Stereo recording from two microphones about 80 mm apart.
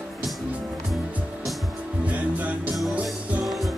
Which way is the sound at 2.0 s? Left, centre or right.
Centre.